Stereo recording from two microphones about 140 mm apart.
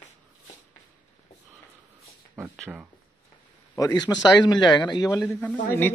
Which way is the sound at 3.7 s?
25° left (ahead or behind).